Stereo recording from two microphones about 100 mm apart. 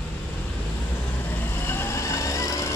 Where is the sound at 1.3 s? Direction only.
20° left (ahead or behind).